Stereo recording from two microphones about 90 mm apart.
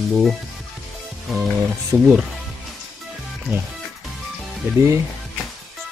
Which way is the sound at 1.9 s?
20° right (ahead or behind).